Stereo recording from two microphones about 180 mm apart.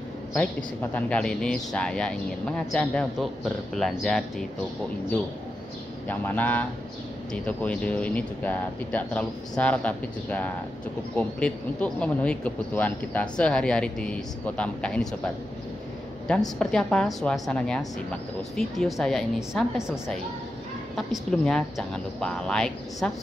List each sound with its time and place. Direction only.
0.9 s speech: 5° left (ahead or behind)
6.0 s speech: 10° left (ahead or behind)
16.3 s speech: 5° left (ahead or behind)
20.9 s speech: centre (ahead or behind)